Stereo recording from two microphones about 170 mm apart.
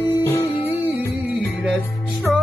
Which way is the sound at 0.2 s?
15° left (ahead or behind).